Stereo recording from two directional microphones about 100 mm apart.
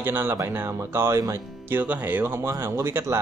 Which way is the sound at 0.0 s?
20° right (ahead or behind).